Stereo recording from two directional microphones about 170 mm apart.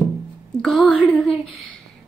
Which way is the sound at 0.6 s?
Centre (ahead or behind).